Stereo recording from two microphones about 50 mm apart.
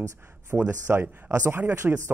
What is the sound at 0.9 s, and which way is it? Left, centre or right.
Speech, right.